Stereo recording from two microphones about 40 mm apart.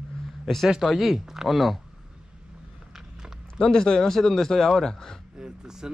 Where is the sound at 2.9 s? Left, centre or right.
Centre.